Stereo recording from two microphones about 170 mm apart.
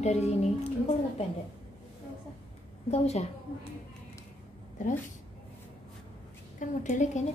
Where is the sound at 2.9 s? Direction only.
40° left (ahead or behind).